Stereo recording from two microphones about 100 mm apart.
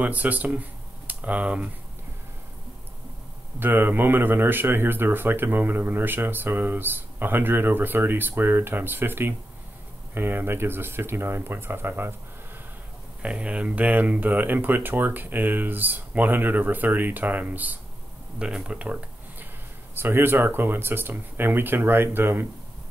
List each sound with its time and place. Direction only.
0.0 s speech: 15° right (ahead or behind)
3.5 s a man's voice: 20° right (ahead or behind)
13.2 s speech: 10° right (ahead or behind)
20.0 s a man's voice: 20° right (ahead or behind)